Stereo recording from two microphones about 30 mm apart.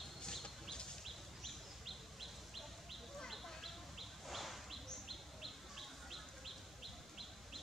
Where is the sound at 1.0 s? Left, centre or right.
Centre.